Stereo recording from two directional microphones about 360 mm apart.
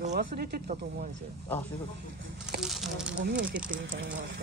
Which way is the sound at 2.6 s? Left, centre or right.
Centre.